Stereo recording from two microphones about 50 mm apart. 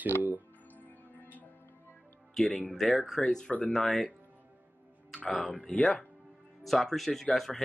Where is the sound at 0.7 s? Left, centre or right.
Left.